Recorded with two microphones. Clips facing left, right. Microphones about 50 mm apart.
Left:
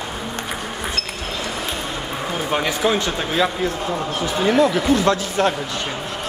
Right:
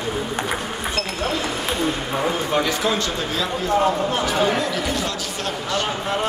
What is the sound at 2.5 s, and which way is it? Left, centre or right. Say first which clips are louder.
Speech: left 4 dB; left.